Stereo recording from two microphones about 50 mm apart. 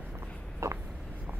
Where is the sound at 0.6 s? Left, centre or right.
Right.